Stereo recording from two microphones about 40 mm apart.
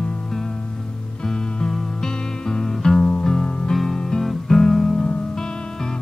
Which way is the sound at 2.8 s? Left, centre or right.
Centre.